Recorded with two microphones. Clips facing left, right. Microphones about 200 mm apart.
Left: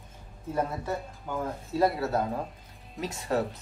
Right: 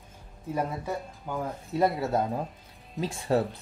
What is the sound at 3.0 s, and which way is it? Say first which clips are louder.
Speech: right 3 dB; 30° right (ahead or behind).